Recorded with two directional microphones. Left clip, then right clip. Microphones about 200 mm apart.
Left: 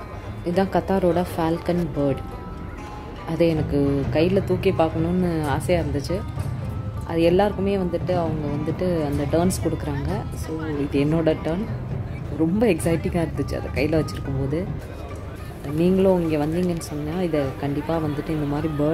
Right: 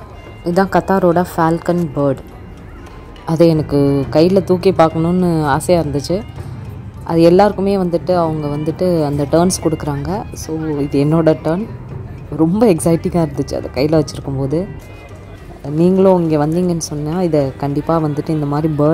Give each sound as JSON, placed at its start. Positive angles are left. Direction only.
{"t": 0.4, "sound": "a woman's voice", "side_deg": -30}
{"t": 3.3, "sound": "speech", "side_deg": -35}
{"t": 15.8, "sound": "speech", "side_deg": -30}